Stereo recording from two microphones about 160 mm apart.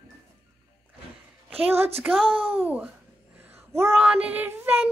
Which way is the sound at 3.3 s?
15° right (ahead or behind).